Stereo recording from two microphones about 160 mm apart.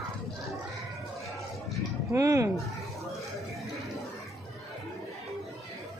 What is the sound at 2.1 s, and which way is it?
Speech, 20° right (ahead or behind).